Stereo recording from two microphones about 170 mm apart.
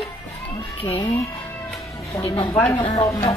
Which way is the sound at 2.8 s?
35° left (ahead or behind).